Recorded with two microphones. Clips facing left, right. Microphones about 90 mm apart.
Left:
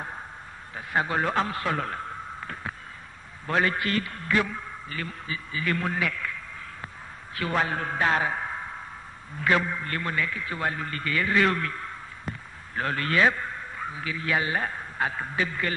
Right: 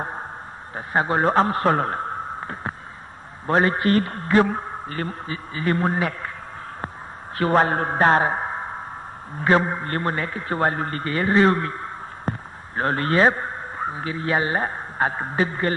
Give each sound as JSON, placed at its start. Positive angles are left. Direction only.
{"t": 0.7, "sound": "a man's voice", "side_deg": -35}
{"t": 7.3, "sound": "a man's voice", "side_deg": -40}